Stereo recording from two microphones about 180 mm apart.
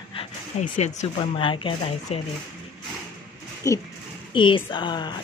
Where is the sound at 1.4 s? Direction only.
30° left (ahead or behind).